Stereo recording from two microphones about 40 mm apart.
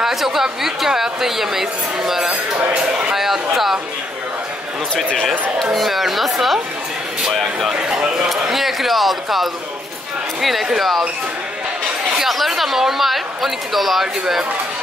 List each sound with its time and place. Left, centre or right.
0.0 s a woman's voice: centre
2.7 s a sound: right
3.2 s a sound: centre
4.9 s speech: centre
5.6 s speech: centre
7.9 s a woman's voice: centre
12.2 s speech: centre